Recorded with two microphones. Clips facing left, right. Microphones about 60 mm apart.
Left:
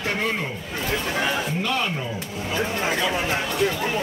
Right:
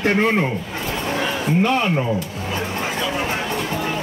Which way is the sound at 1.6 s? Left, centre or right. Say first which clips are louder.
Right 6 dB; right.